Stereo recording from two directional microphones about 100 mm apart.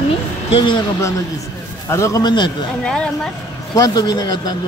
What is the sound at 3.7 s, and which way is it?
Speech, 40° left (ahead or behind).